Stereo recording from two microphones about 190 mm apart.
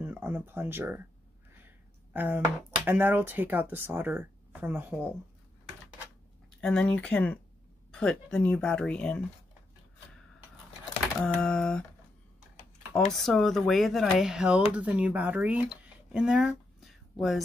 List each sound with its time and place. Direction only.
0.0 s speech: 10° right (ahead or behind)
2.1 s speech: 10° right (ahead or behind)
6.5 s speech: 5° left (ahead or behind)
11.2 s speech: 5° left (ahead or behind)
13.1 s speech: centre (ahead or behind)
16.1 s a sound: 5° right (ahead or behind)